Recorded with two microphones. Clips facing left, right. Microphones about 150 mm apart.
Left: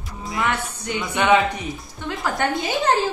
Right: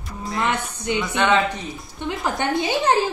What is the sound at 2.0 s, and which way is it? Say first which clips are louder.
Speech: right 2 dB; 20° right (ahead or behind).